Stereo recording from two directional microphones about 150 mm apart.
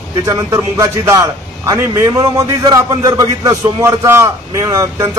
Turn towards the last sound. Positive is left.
turn(degrees=-20)  # may be behind; listen again after turning